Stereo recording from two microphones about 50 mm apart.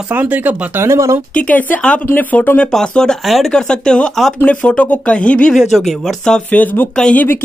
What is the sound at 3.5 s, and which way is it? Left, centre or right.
Speech, centre.